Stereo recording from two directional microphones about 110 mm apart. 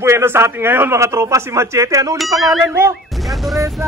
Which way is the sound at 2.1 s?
Centre (ahead or behind).